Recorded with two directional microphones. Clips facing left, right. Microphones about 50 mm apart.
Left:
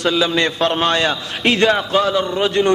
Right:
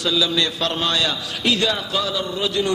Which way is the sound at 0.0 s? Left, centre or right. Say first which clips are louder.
Left 4 dB; left.